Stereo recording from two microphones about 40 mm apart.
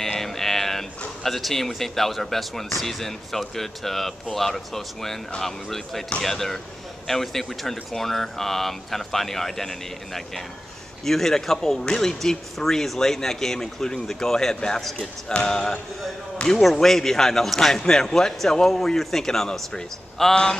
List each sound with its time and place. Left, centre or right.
0.0 s a man's voice: centre